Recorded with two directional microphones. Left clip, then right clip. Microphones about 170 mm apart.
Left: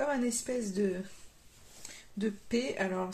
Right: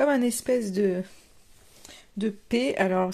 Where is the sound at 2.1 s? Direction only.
50° right (ahead or behind).